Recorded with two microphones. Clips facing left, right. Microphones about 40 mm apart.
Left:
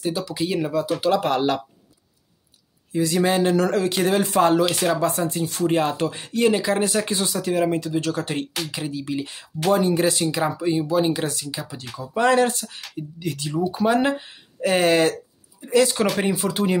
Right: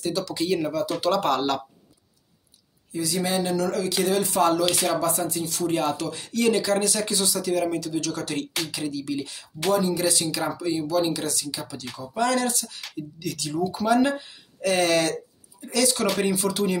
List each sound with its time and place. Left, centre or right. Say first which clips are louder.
0.0 s speech: left 1 dB; centre
2.9 s speech: left 6 dB; left